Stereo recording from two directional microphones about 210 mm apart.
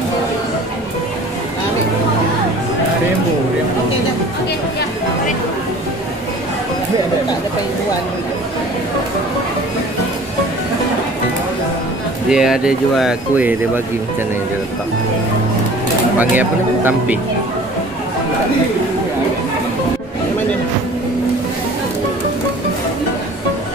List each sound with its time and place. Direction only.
12.3 s speech: 5° right (ahead or behind)
16.2 s speech: 10° right (ahead or behind)